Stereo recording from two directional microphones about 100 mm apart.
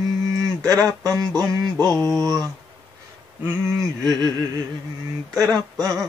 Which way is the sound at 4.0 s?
45° right (ahead or behind).